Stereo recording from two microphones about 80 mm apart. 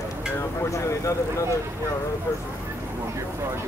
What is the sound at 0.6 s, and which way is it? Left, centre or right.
Speech, left.